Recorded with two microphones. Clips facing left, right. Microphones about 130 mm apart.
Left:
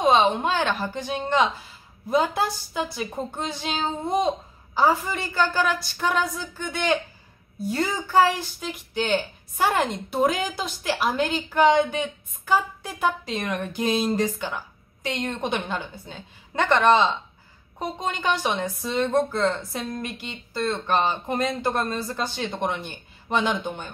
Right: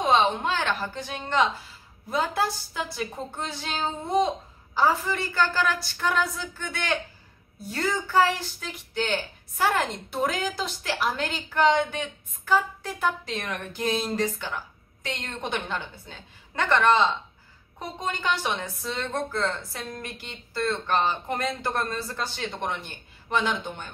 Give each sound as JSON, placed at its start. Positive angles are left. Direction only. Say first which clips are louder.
{"t": 0.0, "sound": "a woman's voice", "louder": "left 3 dB", "side_deg": 15}